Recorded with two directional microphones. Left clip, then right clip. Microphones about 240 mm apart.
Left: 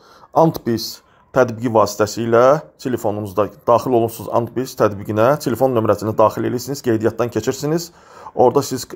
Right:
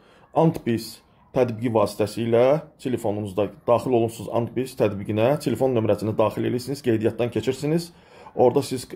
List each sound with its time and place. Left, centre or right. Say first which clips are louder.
1.3 s speech: left 7 dB; centre